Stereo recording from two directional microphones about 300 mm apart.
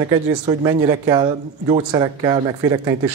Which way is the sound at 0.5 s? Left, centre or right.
Centre.